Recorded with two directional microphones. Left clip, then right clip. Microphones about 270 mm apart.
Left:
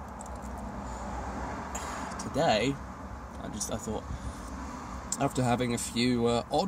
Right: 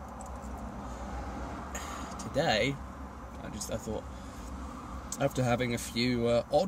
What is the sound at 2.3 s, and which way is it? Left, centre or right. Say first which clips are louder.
Speech: left 2 dB; centre.